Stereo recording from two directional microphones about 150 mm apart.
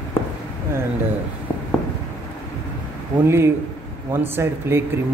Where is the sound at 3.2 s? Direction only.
15° right (ahead or behind).